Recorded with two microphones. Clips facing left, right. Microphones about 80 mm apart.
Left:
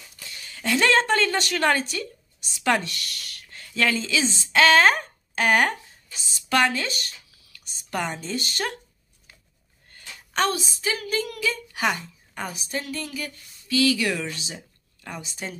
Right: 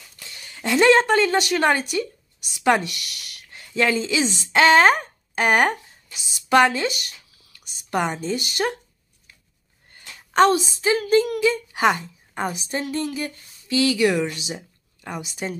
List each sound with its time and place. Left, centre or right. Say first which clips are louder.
0.5 s speech: right 5 dB; right
9.8 s a woman's voice: even; right